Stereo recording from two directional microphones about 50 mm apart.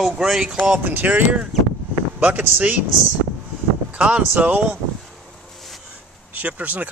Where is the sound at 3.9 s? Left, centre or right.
Right.